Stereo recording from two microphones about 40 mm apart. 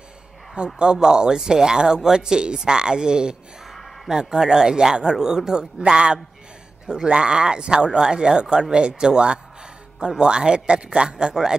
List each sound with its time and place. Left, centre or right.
0.7 s speech: centre
3.6 s a sound: centre
4.1 s speech: centre